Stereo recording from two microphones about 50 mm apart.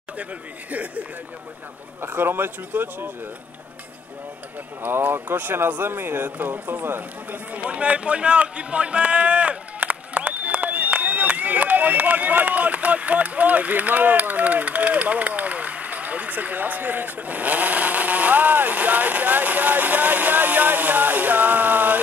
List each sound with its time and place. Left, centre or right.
0.2 s speech: right
2.0 s speech: right
4.8 s speech: right
7.6 s speech: right